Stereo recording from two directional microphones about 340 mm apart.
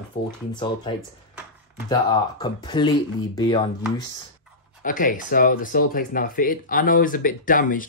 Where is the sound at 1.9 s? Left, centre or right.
Centre.